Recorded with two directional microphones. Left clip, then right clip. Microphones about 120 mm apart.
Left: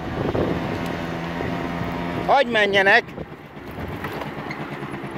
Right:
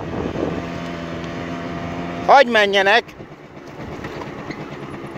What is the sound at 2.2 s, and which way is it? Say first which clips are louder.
Speech: right 6 dB; 70° right (ahead or behind).